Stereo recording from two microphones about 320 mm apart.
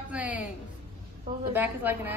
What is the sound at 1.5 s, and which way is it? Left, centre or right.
Speech, centre.